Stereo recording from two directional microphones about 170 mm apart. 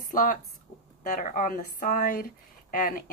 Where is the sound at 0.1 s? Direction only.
50° left (ahead or behind).